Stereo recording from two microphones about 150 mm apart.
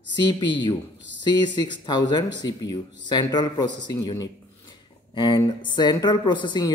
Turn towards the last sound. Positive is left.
turn(degrees=30)  # may be behind; listen again after turning